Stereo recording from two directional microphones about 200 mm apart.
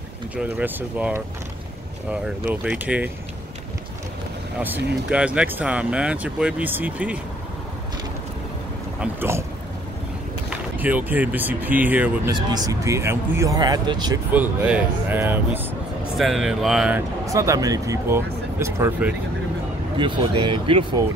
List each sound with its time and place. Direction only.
0.4 s speech: 10° right (ahead or behind)
4.6 s speech: 10° right (ahead or behind)
9.0 s speech: 10° right (ahead or behind)
10.8 s speech: 10° right (ahead or behind)
12.3 s speech: 20° right (ahead or behind)
14.3 s speech: 5° right (ahead or behind)
17.3 s speech: 15° right (ahead or behind)
20.0 s speech: 25° right (ahead or behind)